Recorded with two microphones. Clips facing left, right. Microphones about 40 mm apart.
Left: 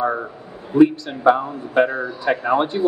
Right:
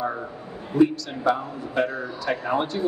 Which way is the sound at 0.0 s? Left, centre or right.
Left.